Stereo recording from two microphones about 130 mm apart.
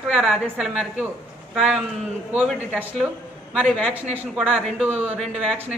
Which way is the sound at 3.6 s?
5° left (ahead or behind).